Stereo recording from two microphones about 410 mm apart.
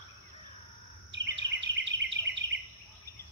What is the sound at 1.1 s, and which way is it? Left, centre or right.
Bird vocalization, right.